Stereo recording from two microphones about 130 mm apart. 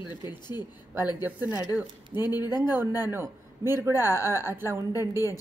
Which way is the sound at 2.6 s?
15° right (ahead or behind).